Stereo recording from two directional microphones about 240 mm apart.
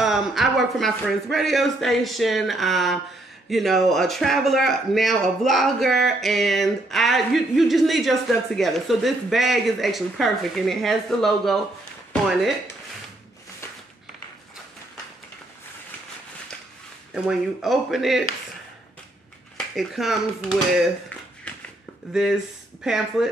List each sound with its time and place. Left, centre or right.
0.0 s speech: centre
12.1 s a sound: centre
17.1 s speech: centre
19.5 s speech: centre
22.1 s speech: centre